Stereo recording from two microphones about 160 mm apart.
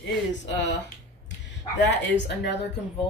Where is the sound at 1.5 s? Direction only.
90° left.